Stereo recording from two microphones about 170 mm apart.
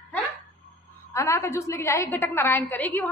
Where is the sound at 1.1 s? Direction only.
15° left (ahead or behind).